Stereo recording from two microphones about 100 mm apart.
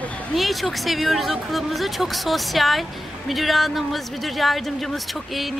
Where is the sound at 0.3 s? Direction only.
Centre (ahead or behind).